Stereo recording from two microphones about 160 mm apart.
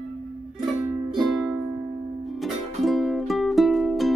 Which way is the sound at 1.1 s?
Centre (ahead or behind).